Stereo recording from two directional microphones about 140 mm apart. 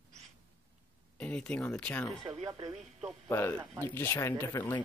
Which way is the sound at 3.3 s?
15° left (ahead or behind).